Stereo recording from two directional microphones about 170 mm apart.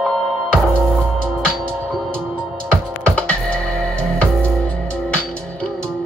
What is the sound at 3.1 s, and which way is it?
Music, 5° left (ahead or behind).